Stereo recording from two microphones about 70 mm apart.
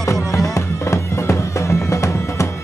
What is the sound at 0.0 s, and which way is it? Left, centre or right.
Music, left.